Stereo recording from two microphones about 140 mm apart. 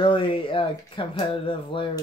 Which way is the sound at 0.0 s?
40° left (ahead or behind).